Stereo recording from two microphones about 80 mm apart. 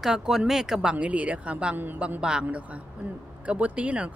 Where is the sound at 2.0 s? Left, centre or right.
Centre.